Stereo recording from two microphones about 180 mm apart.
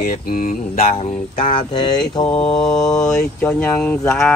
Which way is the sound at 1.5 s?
25° left (ahead or behind).